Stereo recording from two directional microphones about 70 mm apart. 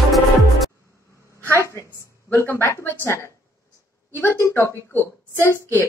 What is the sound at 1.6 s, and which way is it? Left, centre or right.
A woman's voice, left.